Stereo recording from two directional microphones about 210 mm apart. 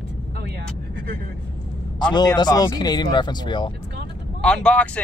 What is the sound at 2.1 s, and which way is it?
Speech, 20° left (ahead or behind).